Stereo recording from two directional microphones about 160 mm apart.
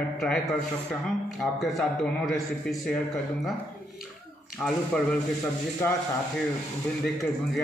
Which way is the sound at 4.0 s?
Centre (ahead or behind).